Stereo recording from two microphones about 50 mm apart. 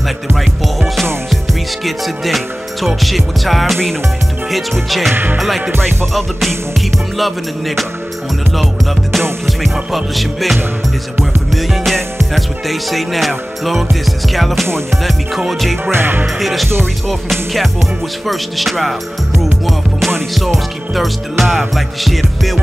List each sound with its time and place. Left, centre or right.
1.3 s music: centre
5.1 s music: right
7.2 s music: centre
9.5 s music: centre
15.0 s music: centre
15.9 s music: right
16.3 s music: centre
20.3 s music: centre